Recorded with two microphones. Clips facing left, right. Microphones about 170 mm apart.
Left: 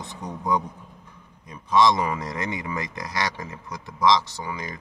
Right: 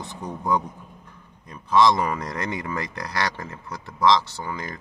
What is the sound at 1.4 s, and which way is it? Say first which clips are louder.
A man's voice: right 1 dB; 15° left (ahead or behind).